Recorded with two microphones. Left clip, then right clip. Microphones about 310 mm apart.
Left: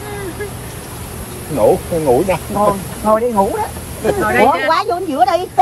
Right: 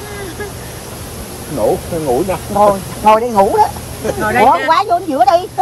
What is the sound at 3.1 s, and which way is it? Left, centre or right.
Speech, right.